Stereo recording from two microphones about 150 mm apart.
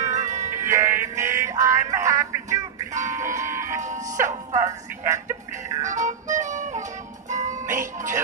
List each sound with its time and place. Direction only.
0.1 s music: 50° right (ahead or behind)
0.7 s synthetic singing: 15° right (ahead or behind)
2.9 s music: 55° right (ahead or behind)
3.2 s a sound: 20° right (ahead or behind)
3.8 s speech: 55° right (ahead or behind)
4.5 s a woman's voice: 20° right (ahead or behind)
5.8 s music: 55° right (ahead or behind)